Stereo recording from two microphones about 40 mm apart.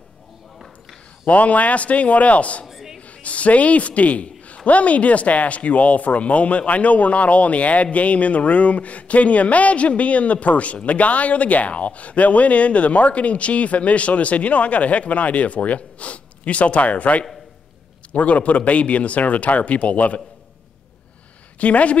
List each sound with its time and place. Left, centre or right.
1.2 s speech: left
2.6 s a sound: centre
3.0 s a woman's voice: left
21.5 s speech: left